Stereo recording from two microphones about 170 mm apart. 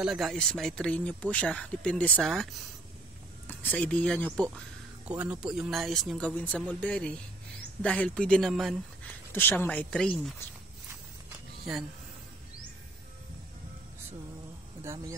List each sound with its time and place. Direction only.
0.0 s speech: centre (ahead or behind)
5.0 s speech: 5° right (ahead or behind)
9.3 s speech: 10° left (ahead or behind)
14.8 s speech: 15° right (ahead or behind)